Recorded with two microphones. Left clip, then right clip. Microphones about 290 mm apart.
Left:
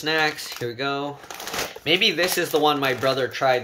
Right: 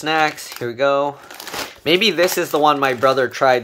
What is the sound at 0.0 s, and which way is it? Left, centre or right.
Speech, centre.